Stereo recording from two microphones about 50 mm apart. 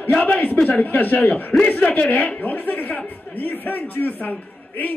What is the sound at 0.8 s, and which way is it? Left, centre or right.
Speech, left.